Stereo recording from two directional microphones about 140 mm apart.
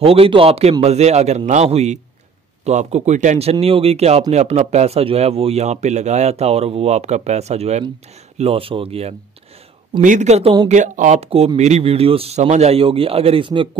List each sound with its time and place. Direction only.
0.0 s speech: 45° right (ahead or behind)
10.0 s speech: 60° right (ahead or behind); by 13.7 s 35° right (ahead or behind)